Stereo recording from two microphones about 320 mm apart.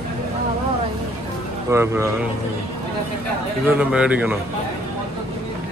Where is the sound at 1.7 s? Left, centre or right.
Centre.